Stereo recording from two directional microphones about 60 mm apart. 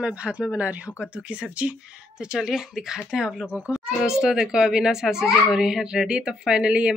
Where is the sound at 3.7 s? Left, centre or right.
Centre.